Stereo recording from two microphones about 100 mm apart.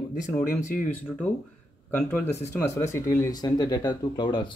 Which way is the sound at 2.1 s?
25° left (ahead or behind).